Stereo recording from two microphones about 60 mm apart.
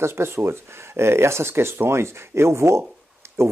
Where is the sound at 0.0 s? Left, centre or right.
Right.